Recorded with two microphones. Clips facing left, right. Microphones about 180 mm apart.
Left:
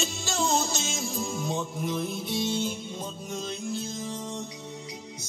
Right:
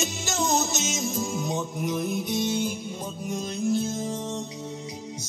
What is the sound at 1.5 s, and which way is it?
Music, 15° right (ahead or behind).